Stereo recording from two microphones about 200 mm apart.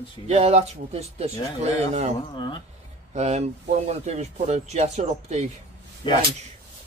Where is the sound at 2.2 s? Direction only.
20° left (ahead or behind).